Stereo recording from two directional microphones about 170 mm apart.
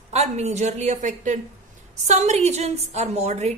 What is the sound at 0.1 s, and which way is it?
A woman's voice, 40° right (ahead or behind).